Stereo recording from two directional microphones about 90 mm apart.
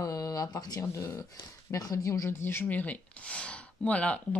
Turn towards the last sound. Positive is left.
turn(degrees=15)  # may be behind; listen again after turning